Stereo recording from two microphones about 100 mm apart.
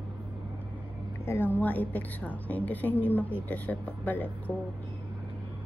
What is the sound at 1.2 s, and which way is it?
A woman's voice, 25° left (ahead or behind).